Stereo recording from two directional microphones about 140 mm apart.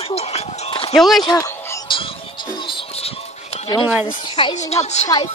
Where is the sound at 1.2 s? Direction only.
30° left (ahead or behind).